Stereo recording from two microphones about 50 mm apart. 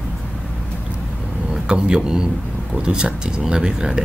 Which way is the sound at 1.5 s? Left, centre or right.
Centre.